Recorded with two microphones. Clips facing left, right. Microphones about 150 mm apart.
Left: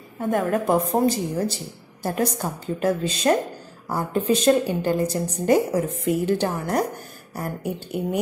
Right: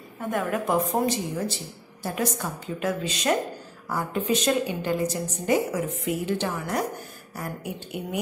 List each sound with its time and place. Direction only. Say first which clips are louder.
0.3 s a woman's voice: left 4 dB; 35° left (ahead or behind)